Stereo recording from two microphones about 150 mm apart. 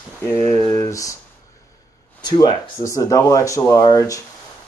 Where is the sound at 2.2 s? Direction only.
30° left (ahead or behind).